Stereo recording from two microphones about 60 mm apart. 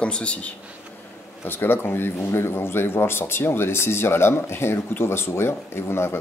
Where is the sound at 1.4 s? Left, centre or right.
Left.